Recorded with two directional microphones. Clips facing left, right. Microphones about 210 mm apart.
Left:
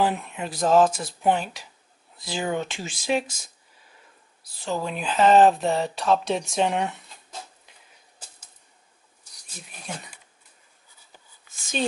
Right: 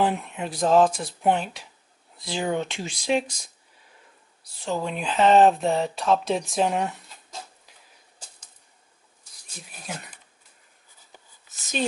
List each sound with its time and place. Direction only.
0.0 s speech: centre (ahead or behind)
4.6 s speech: centre (ahead or behind)
9.6 s speech: 5° right (ahead or behind)